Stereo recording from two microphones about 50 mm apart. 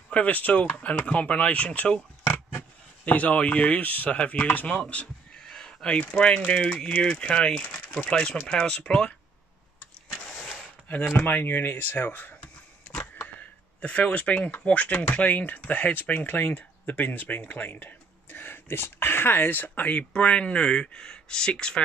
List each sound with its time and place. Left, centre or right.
0.1 s speech: left
2.2 s pig: left
3.1 s speech: left
5.0 s a sound: centre
5.9 s speech: left
11.1 s speech: left
13.4 s a sound: left
14.6 s speech: left